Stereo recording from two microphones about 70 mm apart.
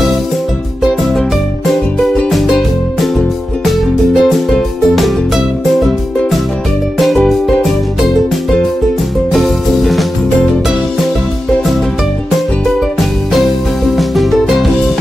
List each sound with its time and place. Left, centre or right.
2.3 s music: centre
9.3 s music: centre
13.9 s music: centre